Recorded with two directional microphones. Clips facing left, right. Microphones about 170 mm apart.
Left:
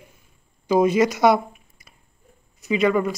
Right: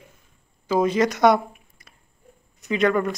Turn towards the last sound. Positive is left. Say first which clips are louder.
# left 1 dB
turn(degrees=5)  # may be behind; listen again after turning